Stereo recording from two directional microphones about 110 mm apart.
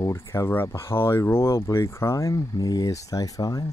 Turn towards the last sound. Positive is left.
turn(degrees=30)  # may be behind; listen again after turning